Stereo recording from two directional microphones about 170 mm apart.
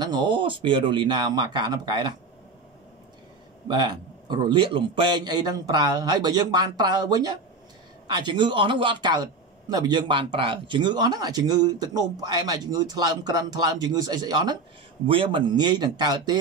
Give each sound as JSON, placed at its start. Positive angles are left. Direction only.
{"t": 0.0, "sound": "a man's voice", "side_deg": -25}
{"t": 3.6, "sound": "a man's voice", "side_deg": -25}